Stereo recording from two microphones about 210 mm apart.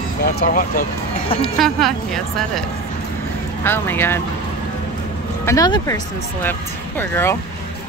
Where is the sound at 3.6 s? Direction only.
10° left (ahead or behind).